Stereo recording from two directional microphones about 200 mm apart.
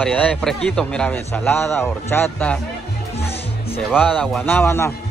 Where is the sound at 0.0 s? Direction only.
5° left (ahead or behind).